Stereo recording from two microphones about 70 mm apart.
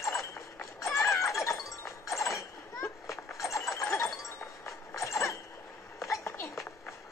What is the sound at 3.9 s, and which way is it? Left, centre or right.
Wind chime, left.